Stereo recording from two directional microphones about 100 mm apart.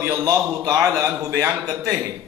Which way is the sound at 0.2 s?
35° right (ahead or behind).